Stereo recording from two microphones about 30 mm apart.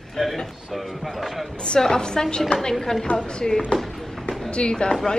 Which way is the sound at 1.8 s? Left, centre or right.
Left.